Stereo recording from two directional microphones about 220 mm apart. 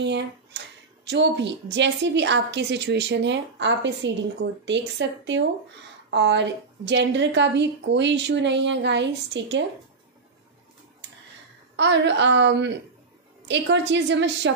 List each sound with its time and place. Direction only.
0.0 s a woman's voice: 50° right (ahead or behind)
11.7 s a woman's voice: 55° right (ahead or behind)